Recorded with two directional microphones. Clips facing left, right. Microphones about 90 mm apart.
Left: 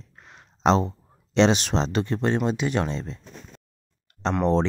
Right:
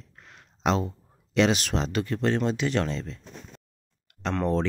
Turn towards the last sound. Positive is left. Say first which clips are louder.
# left 4 dB
turn(degrees=25)  # may be behind; listen again after turning